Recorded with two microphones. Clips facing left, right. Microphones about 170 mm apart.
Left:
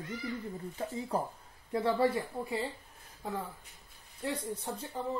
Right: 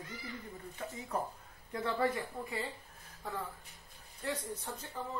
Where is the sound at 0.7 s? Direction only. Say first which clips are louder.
Left 4 dB; 30° left (ahead or behind).